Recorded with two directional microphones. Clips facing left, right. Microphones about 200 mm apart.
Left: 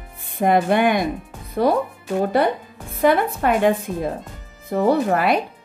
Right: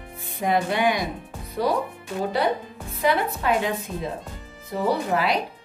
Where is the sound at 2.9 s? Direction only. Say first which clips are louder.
Left 5 dB; 50° left (ahead or behind).